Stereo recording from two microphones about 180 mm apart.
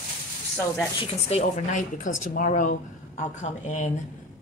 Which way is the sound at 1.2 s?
40° left (ahead or behind).